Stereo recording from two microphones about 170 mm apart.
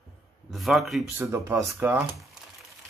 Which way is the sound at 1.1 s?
15° right (ahead or behind).